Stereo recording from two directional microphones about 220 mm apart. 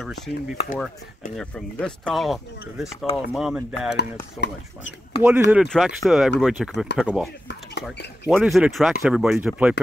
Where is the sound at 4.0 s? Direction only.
50° left (ahead or behind).